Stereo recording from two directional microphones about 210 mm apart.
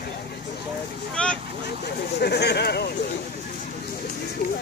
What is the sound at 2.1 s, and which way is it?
Speech, 55° left (ahead or behind).